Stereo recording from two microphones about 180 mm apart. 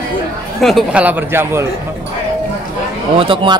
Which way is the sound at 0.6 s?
Centre (ahead or behind).